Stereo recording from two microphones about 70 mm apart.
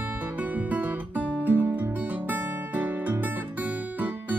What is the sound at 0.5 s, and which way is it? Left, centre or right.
Guitar, right.